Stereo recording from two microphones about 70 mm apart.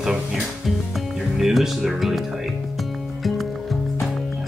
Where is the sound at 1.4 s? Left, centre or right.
Centre.